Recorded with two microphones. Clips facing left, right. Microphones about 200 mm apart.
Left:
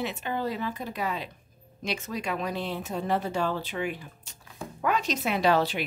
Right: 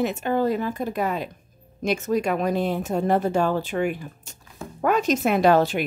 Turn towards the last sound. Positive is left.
turn(degrees=-50)  # may be behind; listen again after turning